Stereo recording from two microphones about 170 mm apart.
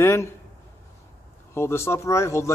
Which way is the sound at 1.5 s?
15° left (ahead or behind).